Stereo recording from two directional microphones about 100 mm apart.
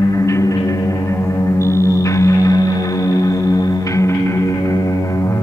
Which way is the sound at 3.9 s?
30° left (ahead or behind).